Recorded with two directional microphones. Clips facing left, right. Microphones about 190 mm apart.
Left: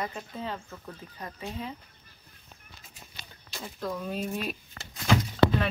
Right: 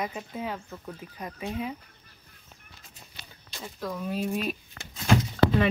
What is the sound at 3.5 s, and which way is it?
Speech, centre (ahead or behind).